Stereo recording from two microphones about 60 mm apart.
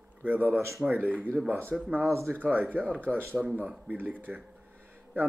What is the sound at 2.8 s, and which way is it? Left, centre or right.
Speech, centre.